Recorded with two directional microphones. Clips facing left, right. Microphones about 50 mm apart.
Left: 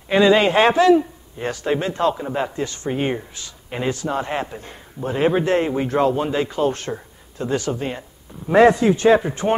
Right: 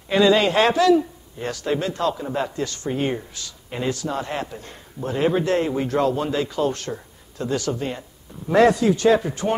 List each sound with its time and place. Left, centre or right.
0.1 s a man's voice: left